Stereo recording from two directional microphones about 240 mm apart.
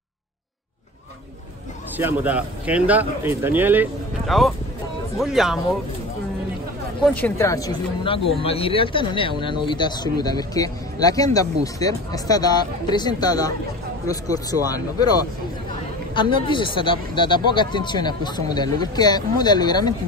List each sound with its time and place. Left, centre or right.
2.0 s speech: centre
7.0 s speech: centre
16.2 s speech: centre